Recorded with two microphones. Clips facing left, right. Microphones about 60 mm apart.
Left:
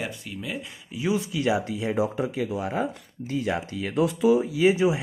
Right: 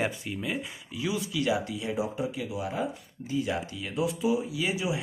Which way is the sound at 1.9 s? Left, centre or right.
Left.